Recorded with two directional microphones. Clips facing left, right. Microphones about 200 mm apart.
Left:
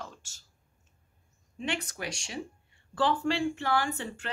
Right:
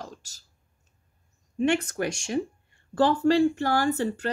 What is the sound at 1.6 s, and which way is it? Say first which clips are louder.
Speech: right 11 dB; 50° right (ahead or behind).